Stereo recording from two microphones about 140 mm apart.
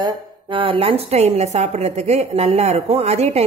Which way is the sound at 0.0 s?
35° right (ahead or behind).